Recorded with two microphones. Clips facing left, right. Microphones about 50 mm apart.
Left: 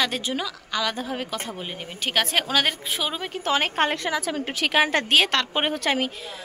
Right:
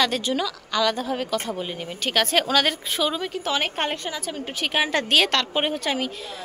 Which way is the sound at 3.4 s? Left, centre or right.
Left.